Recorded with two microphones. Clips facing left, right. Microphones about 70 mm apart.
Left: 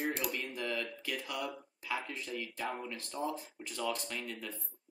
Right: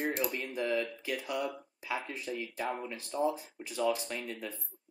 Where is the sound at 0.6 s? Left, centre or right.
Centre.